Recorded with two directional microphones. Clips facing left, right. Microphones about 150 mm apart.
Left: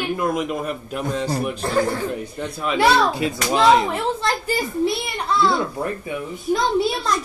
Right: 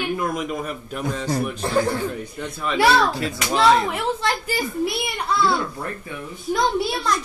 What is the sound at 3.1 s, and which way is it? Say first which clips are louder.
Speech: left 3 dB; 15° left (ahead or behind).